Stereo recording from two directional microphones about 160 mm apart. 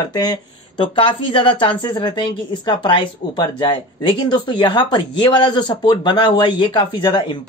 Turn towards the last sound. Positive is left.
turn(degrees=25)  # may be behind; listen again after turning